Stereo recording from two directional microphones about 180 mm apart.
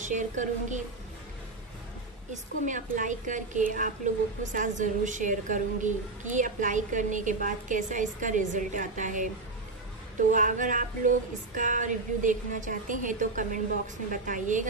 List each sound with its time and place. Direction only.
0.0 s a woman's voice: 45° right (ahead or behind)
2.3 s a woman's voice: 45° right (ahead or behind)
10.3 s a woman's voice: 45° right (ahead or behind)